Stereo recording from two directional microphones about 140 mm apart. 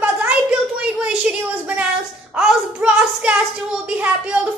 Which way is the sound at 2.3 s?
5° right (ahead or behind).